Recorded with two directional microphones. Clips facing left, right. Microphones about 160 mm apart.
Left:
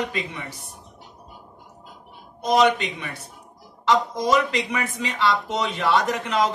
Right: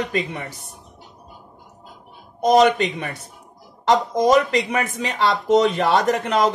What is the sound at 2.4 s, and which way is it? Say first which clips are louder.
Speech: right 4 dB; 45° right (ahead or behind).